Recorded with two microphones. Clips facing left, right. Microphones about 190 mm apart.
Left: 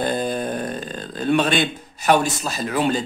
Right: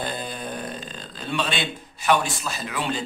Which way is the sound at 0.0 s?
45° left (ahead or behind).